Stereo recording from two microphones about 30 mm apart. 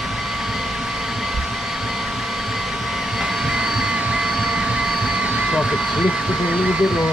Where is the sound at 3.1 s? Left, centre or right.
Centre.